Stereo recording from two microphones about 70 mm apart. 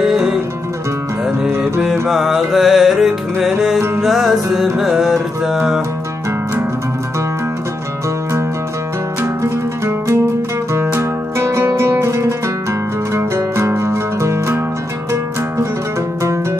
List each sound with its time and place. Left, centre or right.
0.0 s music: centre
2.0 s music: centre
9.2 s music: right
13.6 s music: right